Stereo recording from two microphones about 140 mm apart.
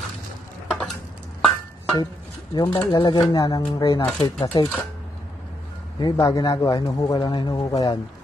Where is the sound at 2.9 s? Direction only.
30° left (ahead or behind).